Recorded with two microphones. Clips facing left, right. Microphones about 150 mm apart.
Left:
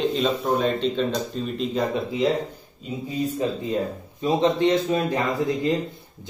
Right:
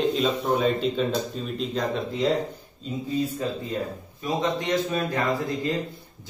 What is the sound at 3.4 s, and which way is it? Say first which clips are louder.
A man's voice: left 4 dB; 20° left (ahead or behind).